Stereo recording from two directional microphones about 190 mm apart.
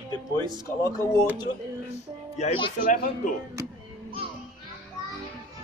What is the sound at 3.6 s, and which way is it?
Speech, 15° right (ahead or behind).